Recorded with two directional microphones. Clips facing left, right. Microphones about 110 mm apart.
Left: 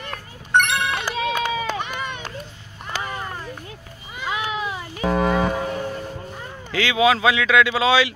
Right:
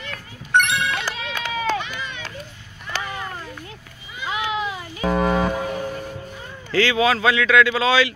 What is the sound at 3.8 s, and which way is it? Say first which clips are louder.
Children playing: left 1 dB; 45° left (ahead or behind).